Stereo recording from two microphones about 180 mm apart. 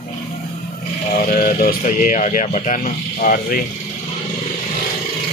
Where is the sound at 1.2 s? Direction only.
55° left (ahead or behind).